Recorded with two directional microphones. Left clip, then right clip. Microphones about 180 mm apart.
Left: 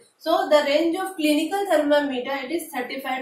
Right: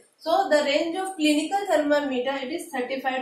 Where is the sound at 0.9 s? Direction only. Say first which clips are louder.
Left 1 dB; 15° right (ahead or behind).